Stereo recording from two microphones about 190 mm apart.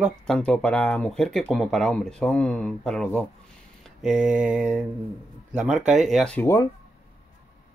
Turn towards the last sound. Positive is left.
turn(degrees=15)  # may be behind; listen again after turning